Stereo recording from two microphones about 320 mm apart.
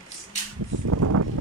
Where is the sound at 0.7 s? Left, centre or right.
Right.